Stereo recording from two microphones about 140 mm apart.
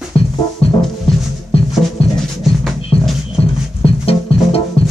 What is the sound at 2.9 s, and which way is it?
Music, 45° left (ahead or behind).